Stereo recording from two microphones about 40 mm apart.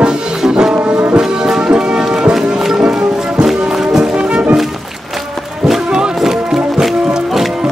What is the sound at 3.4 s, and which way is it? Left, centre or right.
Music, centre.